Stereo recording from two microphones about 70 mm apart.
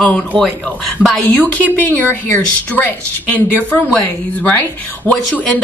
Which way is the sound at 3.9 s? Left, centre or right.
Centre.